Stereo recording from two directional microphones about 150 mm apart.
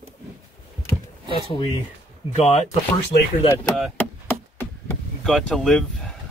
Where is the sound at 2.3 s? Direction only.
45° left (ahead or behind).